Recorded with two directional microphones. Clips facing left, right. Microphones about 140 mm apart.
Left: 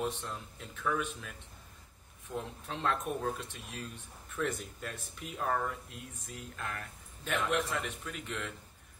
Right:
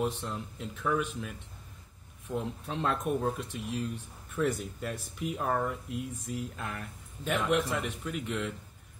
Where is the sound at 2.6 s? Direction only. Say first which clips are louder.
Right 2 dB; 15° right (ahead or behind).